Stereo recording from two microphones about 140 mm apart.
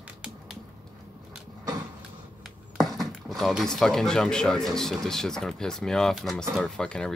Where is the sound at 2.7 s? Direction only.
Centre (ahead or behind).